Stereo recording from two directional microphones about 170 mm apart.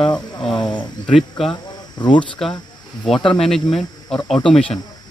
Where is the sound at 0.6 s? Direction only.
25° left (ahead or behind).